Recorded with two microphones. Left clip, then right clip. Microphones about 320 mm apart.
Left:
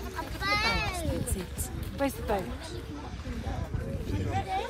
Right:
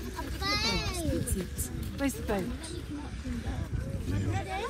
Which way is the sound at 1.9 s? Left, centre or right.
Left.